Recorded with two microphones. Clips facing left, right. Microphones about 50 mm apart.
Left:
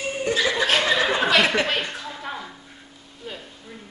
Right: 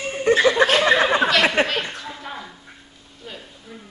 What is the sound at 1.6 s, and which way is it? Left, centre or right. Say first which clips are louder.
Speech: right 3 dB; right.